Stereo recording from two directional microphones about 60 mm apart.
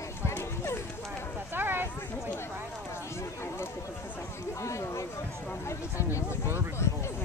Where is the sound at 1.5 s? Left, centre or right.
Right.